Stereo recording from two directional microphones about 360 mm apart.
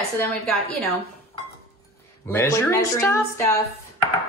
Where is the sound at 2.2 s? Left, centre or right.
Centre.